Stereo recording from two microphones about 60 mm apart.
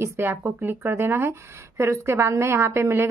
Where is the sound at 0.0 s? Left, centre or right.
Right.